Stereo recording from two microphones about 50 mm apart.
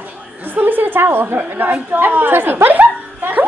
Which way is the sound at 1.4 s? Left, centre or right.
Right.